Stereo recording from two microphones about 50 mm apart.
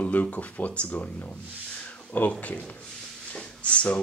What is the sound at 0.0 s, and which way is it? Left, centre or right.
Speech, left.